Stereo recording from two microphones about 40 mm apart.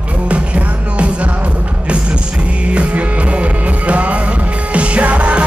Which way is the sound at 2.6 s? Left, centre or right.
Right.